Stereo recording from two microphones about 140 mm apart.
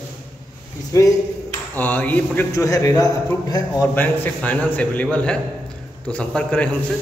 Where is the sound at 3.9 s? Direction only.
15° left (ahead or behind).